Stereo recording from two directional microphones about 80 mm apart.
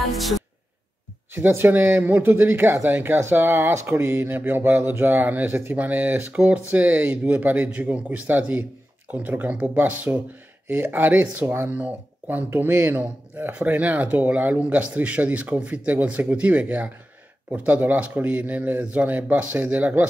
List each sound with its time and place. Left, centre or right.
0.1 s music: centre
1.3 s speech: right